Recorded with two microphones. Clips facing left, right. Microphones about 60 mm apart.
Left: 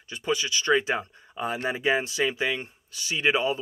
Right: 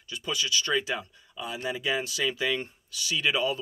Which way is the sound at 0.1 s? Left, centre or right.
Left.